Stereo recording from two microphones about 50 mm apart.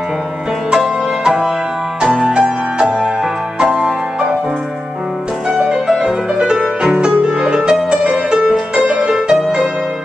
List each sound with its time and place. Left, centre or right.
0.7 s music: centre
5.5 s music: centre